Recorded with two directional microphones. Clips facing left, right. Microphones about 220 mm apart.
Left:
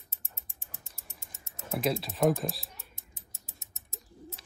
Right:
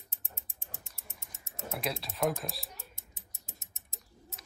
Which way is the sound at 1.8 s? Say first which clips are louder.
Left 6 dB; centre (ahead or behind).